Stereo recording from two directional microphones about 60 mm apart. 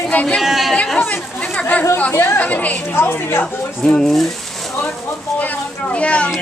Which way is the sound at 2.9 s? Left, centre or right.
Left.